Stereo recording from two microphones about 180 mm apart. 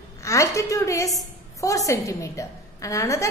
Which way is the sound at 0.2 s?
15° left (ahead or behind).